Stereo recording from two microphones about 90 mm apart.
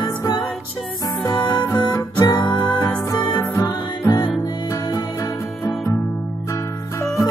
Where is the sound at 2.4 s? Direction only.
15° left (ahead or behind).